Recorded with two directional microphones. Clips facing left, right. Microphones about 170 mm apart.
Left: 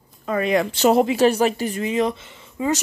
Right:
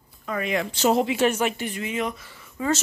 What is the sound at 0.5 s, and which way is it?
Speech, 70° left (ahead or behind).